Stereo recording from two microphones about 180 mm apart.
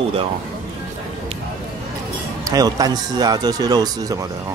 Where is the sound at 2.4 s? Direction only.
20° right (ahead or behind).